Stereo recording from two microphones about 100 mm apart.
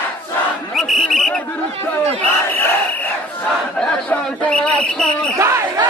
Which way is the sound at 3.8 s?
10° left (ahead or behind).